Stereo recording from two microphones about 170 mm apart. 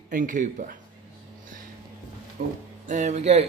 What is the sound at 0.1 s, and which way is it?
Speech, 50° right (ahead or behind).